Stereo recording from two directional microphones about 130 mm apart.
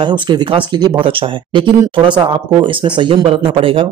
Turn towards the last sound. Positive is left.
turn(degrees=-40)  # may be behind; listen again after turning